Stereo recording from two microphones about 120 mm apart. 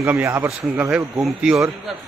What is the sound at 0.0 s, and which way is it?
Speech, 20° right (ahead or behind).